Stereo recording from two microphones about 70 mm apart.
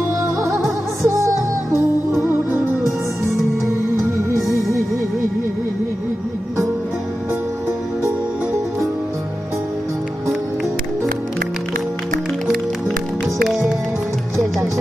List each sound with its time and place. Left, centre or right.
0.2 s music: right
4.3 s music: right
13.5 s music: centre